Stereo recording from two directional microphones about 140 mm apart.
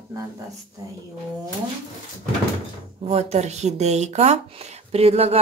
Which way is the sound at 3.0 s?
50° right (ahead or behind).